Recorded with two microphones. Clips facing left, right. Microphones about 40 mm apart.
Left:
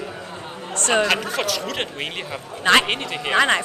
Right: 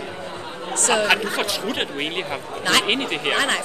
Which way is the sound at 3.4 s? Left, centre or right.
Left.